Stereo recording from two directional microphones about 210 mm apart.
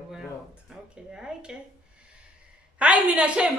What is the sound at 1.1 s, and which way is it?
Speech, 5° right (ahead or behind).